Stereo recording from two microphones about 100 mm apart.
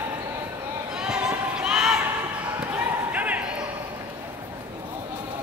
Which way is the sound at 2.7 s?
15° right (ahead or behind).